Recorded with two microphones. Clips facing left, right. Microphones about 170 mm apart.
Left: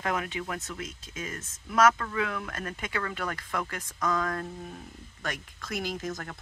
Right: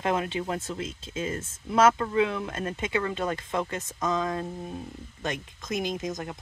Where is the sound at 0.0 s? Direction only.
25° right (ahead or behind).